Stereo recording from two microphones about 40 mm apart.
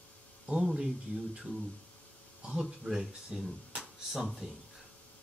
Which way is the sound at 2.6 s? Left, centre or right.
Centre.